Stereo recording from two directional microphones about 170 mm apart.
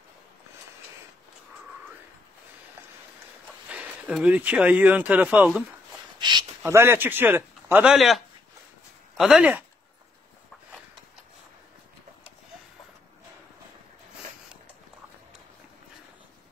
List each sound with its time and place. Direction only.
3.6 s speech: 10° right (ahead or behind)
6.1 s a sound: 25° right (ahead or behind)
6.6 s speech: 15° right (ahead or behind)